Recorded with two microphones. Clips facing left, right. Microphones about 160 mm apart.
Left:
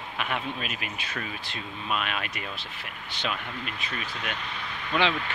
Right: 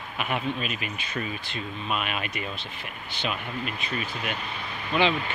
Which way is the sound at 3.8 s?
5° right (ahead or behind).